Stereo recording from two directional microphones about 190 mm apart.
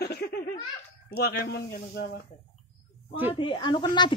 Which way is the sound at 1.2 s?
55° left (ahead or behind).